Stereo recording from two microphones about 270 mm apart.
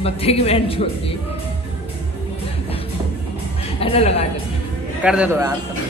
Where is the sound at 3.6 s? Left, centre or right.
Left.